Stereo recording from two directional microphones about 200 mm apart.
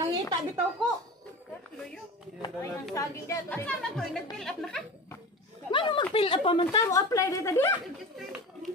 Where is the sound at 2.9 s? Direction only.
15° left (ahead or behind).